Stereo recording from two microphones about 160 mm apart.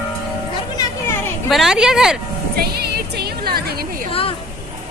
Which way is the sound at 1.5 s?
Centre (ahead or behind).